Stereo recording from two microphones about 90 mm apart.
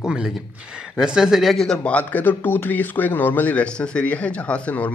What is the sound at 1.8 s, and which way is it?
Speech, 15° left (ahead or behind).